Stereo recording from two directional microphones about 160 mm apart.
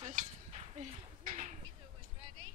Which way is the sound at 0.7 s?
40° right (ahead or behind).